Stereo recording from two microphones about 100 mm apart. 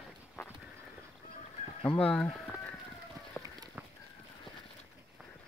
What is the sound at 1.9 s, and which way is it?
Speech, 10° left (ahead or behind).